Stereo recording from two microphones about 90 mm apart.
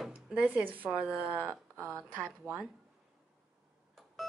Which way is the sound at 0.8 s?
10° right (ahead or behind).